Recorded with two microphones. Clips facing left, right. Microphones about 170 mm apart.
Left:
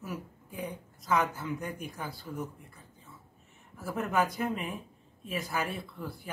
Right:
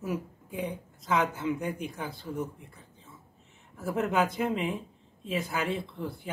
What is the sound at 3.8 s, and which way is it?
A woman's voice, 20° right (ahead or behind).